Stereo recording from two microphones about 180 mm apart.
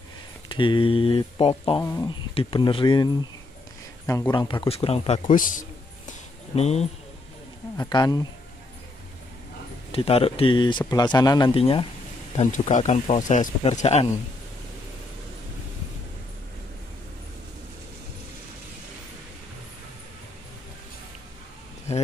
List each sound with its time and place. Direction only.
0.5 s speech: 25° left (ahead or behind)
1.8 s speech: 20° left (ahead or behind)
2.3 s a man's voice: 30° left (ahead or behind)
7.7 s speech: 20° left (ahead or behind)
9.9 s speech: 35° left (ahead or behind)
12.4 s speech: 40° left (ahead or behind)
21.9 s speech: 40° left (ahead or behind)